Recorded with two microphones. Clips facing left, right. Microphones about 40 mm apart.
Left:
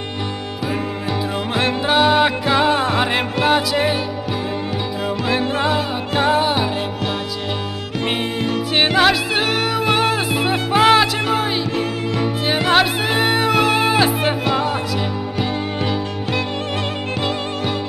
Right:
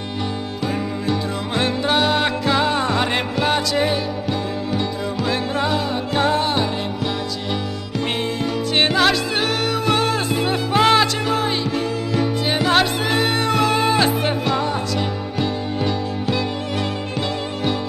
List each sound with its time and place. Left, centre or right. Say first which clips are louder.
1.8 s music: left 5 dB; centre
5.6 s music: left 1 dB; centre
8.7 s music: left 2 dB; centre